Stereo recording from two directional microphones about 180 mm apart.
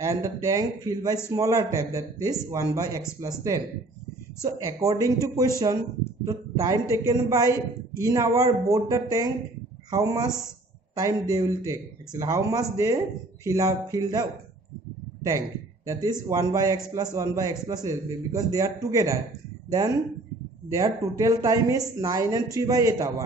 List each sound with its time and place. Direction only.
0.0 s a man's voice: 20° right (ahead or behind)
15.9 s speech: 20° right (ahead or behind)
20.7 s speech: 20° right (ahead or behind)